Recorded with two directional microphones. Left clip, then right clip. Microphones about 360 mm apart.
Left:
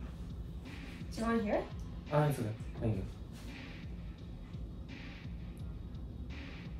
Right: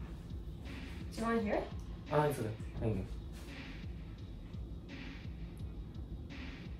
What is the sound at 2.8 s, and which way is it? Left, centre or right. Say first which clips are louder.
Speech: even; centre.